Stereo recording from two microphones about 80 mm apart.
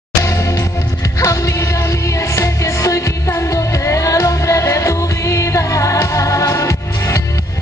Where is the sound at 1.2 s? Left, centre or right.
Left.